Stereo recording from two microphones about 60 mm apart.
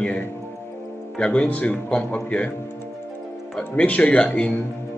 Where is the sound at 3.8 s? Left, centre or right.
Left.